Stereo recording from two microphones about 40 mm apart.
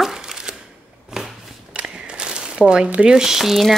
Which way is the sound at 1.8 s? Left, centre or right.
Right.